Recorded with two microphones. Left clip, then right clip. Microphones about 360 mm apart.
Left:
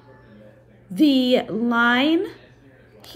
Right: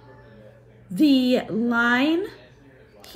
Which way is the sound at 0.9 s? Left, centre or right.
Centre.